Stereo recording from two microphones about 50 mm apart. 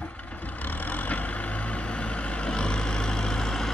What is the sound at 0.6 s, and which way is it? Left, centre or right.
Vehicle, left.